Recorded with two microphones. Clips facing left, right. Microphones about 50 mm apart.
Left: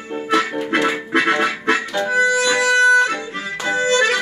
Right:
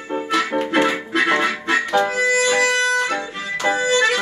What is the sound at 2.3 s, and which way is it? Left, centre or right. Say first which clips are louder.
Music: even; left.